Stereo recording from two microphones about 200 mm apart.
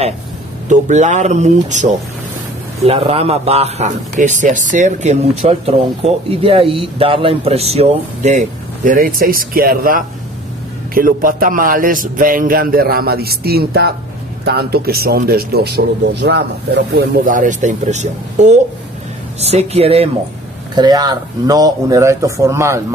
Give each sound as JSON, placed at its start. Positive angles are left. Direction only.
{"t": 0.7, "sound": "speech", "side_deg": -35}
{"t": 8.8, "sound": "a man's voice", "side_deg": -45}